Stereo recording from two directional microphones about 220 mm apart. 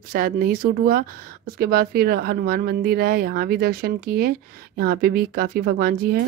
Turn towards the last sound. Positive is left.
turn(degrees=-40)  # may be behind; listen again after turning